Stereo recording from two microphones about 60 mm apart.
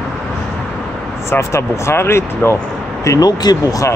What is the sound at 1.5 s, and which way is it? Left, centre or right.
Speech, left.